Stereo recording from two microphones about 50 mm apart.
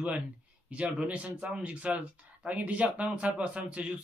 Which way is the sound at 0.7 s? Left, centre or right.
Right.